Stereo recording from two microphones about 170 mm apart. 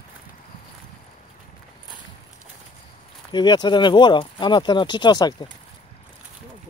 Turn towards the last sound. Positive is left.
turn(degrees=25)  # may be behind; listen again after turning